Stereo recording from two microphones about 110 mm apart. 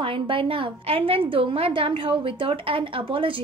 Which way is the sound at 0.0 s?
50° right (ahead or behind).